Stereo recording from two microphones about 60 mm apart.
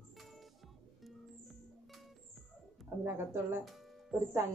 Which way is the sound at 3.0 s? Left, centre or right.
Right.